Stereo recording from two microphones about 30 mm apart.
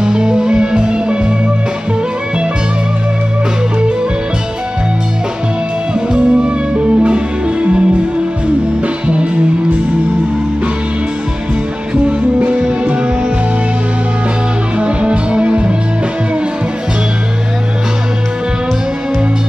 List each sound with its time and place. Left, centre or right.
0.0 s music: right
5.9 s music: right
8.8 s music: right
12.8 s music: right
14.8 s music: right